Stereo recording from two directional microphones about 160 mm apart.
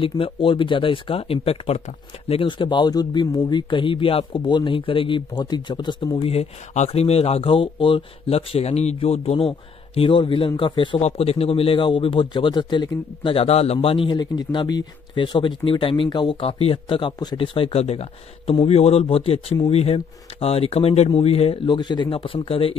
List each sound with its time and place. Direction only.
0.0 s speech: 30° left (ahead or behind)
6.2 s speech: 45° left (ahead or behind)
9.9 s speech: 30° left (ahead or behind)
11.0 s speech: 40° left (ahead or behind)